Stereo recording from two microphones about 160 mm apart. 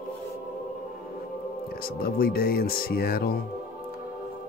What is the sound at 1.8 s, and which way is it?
Speech, 70° left (ahead or behind).